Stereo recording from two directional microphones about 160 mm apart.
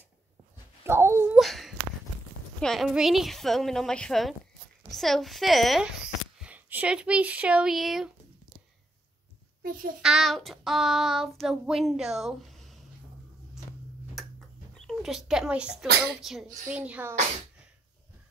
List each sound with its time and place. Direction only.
0.8 s speech: 15° right (ahead or behind)
1.3 s a sound: centre (ahead or behind)
2.6 s child singing: centre (ahead or behind)
6.4 s speech: 10° right (ahead or behind)
9.6 s a sound: 65° right (ahead or behind)
10.0 s child singing: centre (ahead or behind)
14.9 s speech: centre (ahead or behind)
16.2 s child singing: centre (ahead or behind)
16.7 s speech: 10° right (ahead or behind)